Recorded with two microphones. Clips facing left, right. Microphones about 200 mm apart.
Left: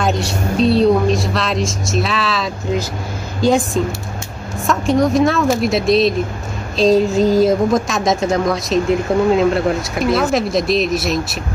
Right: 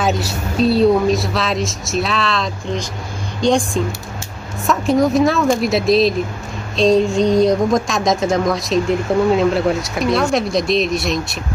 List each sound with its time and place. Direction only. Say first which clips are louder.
0.0 s speech: left 1 dB; centre (ahead or behind)